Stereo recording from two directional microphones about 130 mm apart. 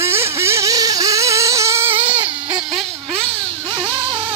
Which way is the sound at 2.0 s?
45° right (ahead or behind).